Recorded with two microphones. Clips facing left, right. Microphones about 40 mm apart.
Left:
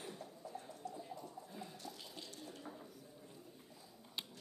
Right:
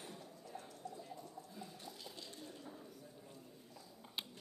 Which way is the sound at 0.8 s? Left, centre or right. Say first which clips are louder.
Left 2 dB; centre.